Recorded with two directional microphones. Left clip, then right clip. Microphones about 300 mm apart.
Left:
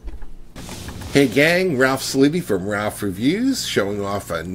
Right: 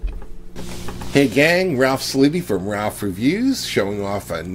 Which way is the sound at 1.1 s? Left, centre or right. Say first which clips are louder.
Even; centre.